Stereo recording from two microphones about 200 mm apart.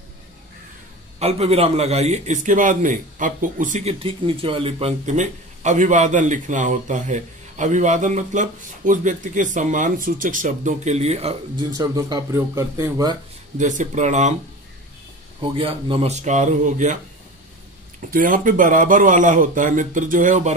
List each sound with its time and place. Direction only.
1.2 s a man's voice: 30° right (ahead or behind)
11.7 s speech: 20° right (ahead or behind)
13.6 s a man's voice: 40° right (ahead or behind)
15.5 s a man's voice: 25° right (ahead or behind)
18.1 s a man's voice: 45° right (ahead or behind)